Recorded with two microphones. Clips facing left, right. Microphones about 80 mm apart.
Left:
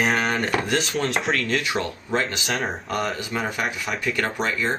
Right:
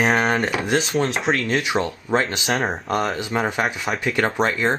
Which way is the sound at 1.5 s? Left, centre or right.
Centre.